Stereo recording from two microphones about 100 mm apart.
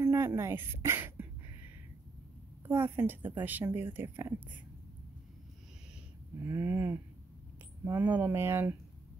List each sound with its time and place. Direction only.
0.0 s speech: 30° right (ahead or behind)
2.6 s a woman's voice: 20° right (ahead or behind)
6.4 s a woman's voice: 20° right (ahead or behind)